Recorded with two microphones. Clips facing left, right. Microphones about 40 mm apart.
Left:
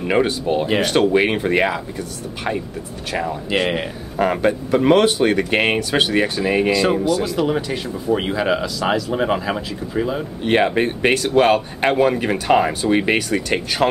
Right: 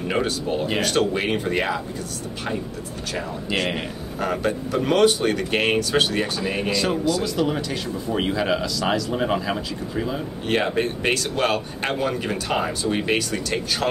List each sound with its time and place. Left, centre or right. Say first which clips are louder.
0.1 s speech: left 6 dB; left
3.4 s speech: left 4 dB; centre
4.2 s speech: left 6 dB; left
7.4 s speech: left 4 dB; centre
10.4 s speech: left 5 dB; left